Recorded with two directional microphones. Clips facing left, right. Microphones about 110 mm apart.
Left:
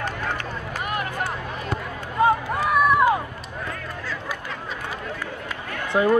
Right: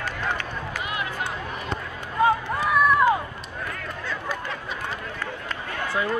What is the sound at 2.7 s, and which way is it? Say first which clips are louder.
Run: left 1 dB; 10° left (ahead or behind).